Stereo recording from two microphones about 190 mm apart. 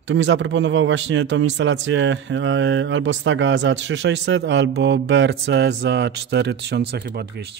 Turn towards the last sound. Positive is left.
turn(degrees=-60)  # may be behind; listen again after turning